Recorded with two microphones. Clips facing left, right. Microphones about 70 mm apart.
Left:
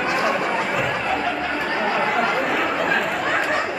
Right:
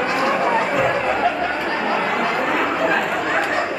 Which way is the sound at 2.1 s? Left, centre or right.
Centre.